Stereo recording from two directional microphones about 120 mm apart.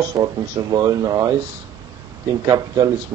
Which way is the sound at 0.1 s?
35° right (ahead or behind).